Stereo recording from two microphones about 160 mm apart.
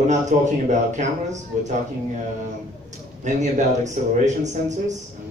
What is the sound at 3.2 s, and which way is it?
A man's voice, 50° right (ahead or behind).